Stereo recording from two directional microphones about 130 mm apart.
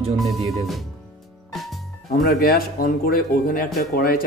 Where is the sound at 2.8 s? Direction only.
90° left.